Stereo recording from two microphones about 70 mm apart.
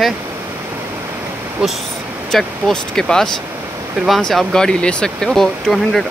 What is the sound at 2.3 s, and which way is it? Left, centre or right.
Speech, centre.